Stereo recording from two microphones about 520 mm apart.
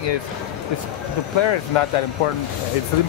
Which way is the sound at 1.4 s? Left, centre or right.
Left.